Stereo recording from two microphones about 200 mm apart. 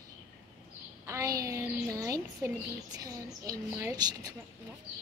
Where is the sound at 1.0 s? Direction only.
15° right (ahead or behind).